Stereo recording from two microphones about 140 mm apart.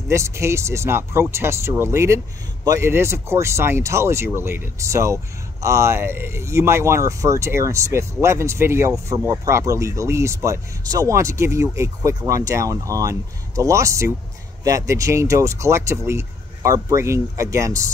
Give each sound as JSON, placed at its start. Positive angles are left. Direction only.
{"t": 0.1, "sound": "speech", "side_deg": -20}